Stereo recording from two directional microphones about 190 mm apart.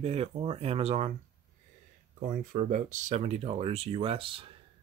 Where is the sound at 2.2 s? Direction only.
45° right (ahead or behind); by 4.5 s 30° right (ahead or behind).